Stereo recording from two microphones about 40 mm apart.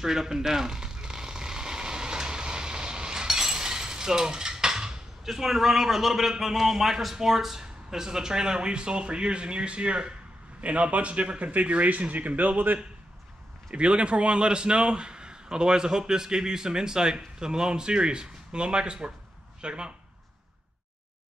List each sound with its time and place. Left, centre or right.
0.0 s a sound: centre
5.2 s a man's voice: centre; by 12.7 s right
13.7 s a man's voice: right